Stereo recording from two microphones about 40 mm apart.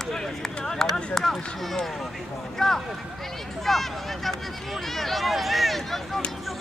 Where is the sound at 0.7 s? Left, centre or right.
Centre.